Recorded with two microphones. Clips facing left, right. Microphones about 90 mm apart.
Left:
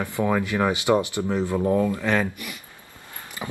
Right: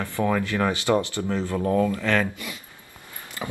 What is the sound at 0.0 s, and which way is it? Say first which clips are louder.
Speech: left 1 dB; 15° left (ahead or behind).